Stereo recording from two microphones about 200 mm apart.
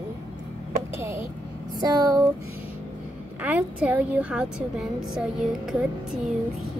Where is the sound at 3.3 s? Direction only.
5° right (ahead or behind).